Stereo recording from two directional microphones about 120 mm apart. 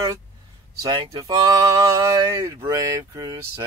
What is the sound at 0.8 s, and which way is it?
Male singing, 35° right (ahead or behind).